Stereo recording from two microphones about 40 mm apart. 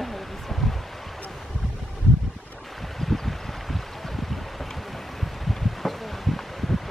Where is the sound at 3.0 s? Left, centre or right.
Centre.